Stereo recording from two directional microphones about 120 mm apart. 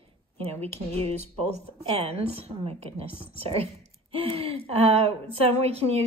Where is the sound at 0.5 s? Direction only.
60° right (ahead or behind).